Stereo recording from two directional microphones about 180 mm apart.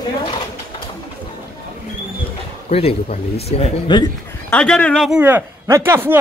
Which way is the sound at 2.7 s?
35° left (ahead or behind).